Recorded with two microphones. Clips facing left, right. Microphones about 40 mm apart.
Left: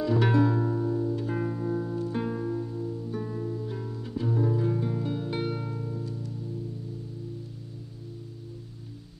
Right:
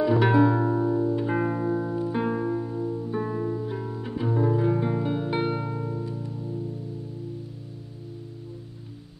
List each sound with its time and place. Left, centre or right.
0.0 s music: centre
3.6 s music: centre